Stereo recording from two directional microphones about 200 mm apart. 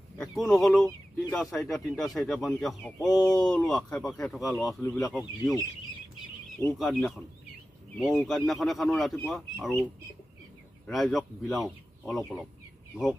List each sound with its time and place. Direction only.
0.2 s speech: centre (ahead or behind)
10.9 s speech: centre (ahead or behind)